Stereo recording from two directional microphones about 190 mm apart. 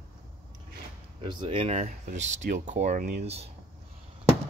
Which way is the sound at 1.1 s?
25° right (ahead or behind).